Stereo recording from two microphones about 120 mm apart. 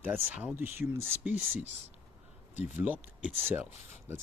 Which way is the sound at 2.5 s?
15° right (ahead or behind).